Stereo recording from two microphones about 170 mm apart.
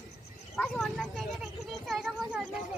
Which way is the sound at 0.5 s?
5° left (ahead or behind).